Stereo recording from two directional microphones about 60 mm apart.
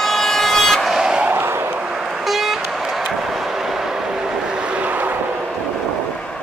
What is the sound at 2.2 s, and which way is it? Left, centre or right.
Vehicle, centre.